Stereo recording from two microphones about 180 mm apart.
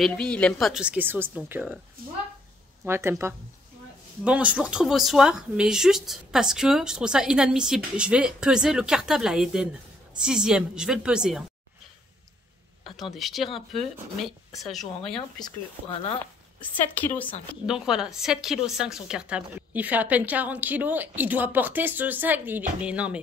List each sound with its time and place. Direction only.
0.0 s a woman's voice: 5° left (ahead or behind)
2.9 s a woman's voice: 15° right (ahead or behind)
12.9 s a woman's voice: centre (ahead or behind)
15.3 s speech: 25° left (ahead or behind)
17.6 s a woman's voice: 5° right (ahead or behind)